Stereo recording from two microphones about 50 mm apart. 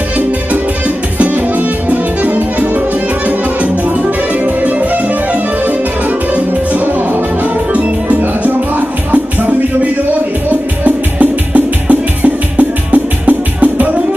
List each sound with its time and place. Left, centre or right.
1.1 s music: right
4.6 s music: right
6.3 s music: right
10.5 s music: right